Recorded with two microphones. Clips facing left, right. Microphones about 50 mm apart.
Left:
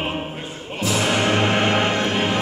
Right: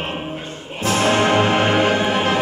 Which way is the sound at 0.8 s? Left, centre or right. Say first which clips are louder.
Right 4 dB; right.